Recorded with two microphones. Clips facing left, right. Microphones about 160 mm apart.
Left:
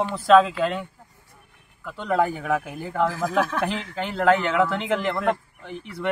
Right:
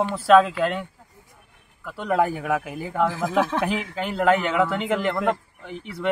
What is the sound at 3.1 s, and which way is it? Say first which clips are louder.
Speech: even; 20° right (ahead or behind).